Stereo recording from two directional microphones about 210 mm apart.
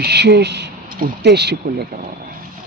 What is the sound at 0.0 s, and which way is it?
Speech, 50° right (ahead or behind).